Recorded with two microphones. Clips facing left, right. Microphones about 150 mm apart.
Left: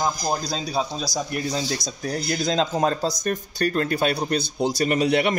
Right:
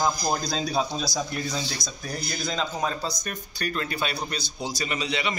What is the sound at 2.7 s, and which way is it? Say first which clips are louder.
Speech: left 6 dB; 45° left (ahead or behind).